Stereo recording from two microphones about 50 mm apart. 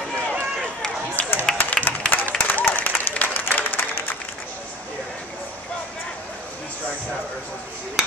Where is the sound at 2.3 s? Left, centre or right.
Left.